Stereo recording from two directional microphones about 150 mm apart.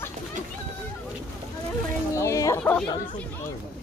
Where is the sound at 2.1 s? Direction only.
20° left (ahead or behind).